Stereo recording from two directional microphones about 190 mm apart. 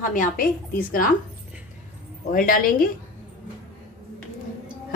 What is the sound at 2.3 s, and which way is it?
Speech, 50° left (ahead or behind).